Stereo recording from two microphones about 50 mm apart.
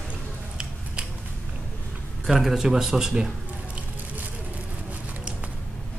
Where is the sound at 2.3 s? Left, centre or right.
Centre.